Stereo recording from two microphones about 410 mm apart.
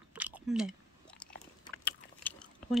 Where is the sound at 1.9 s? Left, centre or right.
Centre.